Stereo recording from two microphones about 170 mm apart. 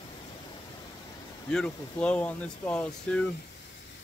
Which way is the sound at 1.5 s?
5° left (ahead or behind).